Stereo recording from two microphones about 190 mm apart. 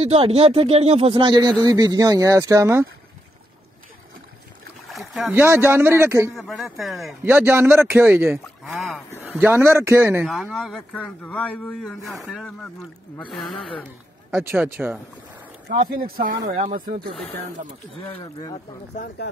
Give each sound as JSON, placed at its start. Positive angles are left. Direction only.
{"t": 0.0, "sound": "speech", "side_deg": -30}
{"t": 4.8, "sound": "splash", "side_deg": 0}
{"t": 5.4, "sound": "speech", "side_deg": -10}
{"t": 6.3, "sound": "a man's voice", "side_deg": 0}
{"t": 7.2, "sound": "a man's voice", "side_deg": -10}
{"t": 10.2, "sound": "a man's voice", "side_deg": 0}
{"t": 13.8, "sound": "speech", "side_deg": -10}
{"t": 15.8, "sound": "speech", "side_deg": -45}
{"t": 18.2, "sound": "speech", "side_deg": 20}